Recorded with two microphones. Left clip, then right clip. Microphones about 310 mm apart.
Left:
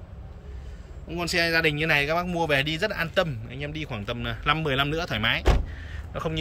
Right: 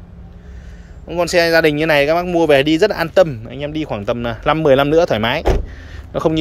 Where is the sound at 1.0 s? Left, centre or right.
Centre.